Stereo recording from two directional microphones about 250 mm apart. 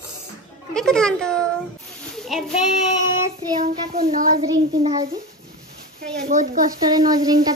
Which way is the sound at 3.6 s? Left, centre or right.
Right.